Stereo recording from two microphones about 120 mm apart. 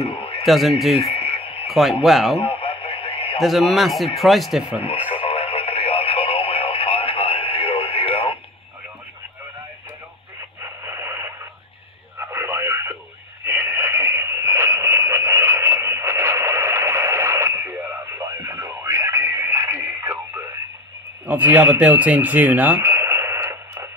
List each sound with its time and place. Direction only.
0.0 s a sound: 55° left (ahead or behind)
0.4 s a man's voice: centre (ahead or behind)
1.1 s radio: 55° left (ahead or behind)
1.7 s a man's voice: centre (ahead or behind)
2.3 s radio: 55° left (ahead or behind)
3.3 s a man's voice: centre (ahead or behind)
5.2 s radio: 50° left (ahead or behind)
10.6 s radio: 25° right (ahead or behind)
13.5 s frog: 20° right (ahead or behind)
21.3 s radio: 15° right (ahead or behind)